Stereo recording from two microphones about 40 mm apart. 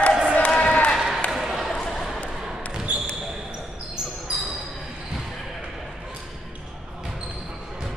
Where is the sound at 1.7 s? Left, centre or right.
Centre.